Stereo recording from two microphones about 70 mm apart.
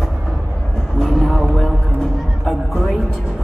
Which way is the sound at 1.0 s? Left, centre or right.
Centre.